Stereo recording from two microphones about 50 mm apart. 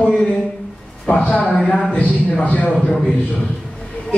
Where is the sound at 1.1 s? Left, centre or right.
Left.